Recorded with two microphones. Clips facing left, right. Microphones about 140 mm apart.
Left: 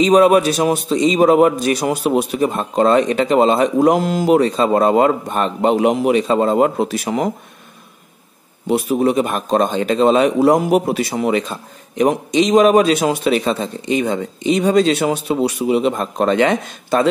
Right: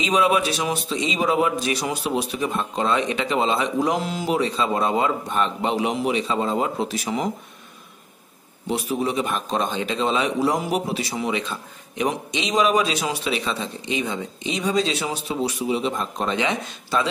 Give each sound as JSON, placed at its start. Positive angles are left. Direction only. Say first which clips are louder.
{"t": 0.0, "sound": "a man's voice", "louder": "left 9 dB", "side_deg": 45}
{"t": 8.6, "sound": "a man's voice", "louder": "left 8 dB", "side_deg": 55}